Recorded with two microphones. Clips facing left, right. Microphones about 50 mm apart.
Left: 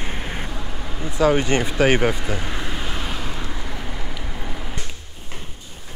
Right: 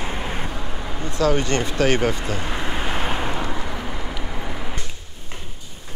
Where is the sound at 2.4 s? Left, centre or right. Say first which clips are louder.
Right 2 dB; centre.